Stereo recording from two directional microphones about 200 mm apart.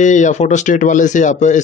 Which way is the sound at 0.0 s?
40° left (ahead or behind).